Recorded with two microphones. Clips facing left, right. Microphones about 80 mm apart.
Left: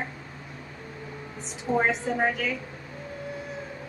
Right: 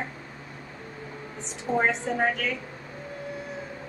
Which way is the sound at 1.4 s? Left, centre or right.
Centre.